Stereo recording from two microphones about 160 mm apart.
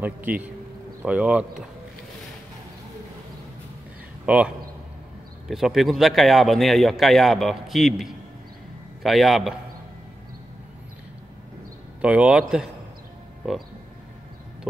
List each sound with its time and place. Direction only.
0.0 s speech: 10° right (ahead or behind)
4.3 s speech: 10° right (ahead or behind)
12.0 s speech: 5° right (ahead or behind)